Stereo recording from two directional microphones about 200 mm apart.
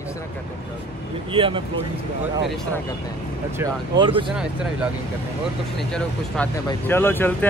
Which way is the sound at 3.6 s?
25° right (ahead or behind).